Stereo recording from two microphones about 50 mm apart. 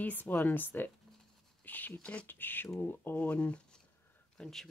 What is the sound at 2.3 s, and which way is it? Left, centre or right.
Speech, left.